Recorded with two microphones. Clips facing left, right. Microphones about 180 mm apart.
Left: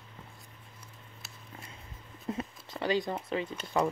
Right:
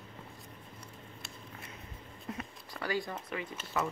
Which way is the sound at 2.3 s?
20° left (ahead or behind).